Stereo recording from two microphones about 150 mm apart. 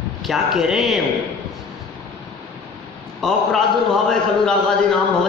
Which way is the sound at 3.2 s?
Centre (ahead or behind).